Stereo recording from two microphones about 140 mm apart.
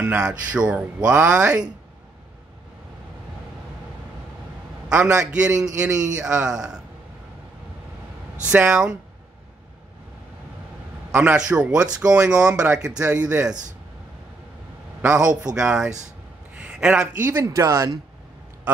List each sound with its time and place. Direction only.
0.0 s speech: 10° right (ahead or behind)
4.8 s a sound: 10° right (ahead or behind)
5.3 s a man's voice: 5° right (ahead or behind)
8.5 s speech: 10° right (ahead or behind)
11.1 s speech: 15° right (ahead or behind)
15.6 s a man's voice: 5° right (ahead or behind)
16.5 s a sound: 5° right (ahead or behind)
17.2 s speech: 15° right (ahead or behind)